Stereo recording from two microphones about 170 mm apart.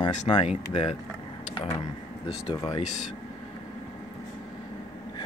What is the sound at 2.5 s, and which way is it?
Speech, 25° left (ahead or behind).